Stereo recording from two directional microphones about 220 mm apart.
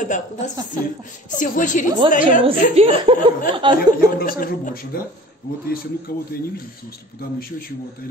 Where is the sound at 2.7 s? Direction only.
25° right (ahead or behind).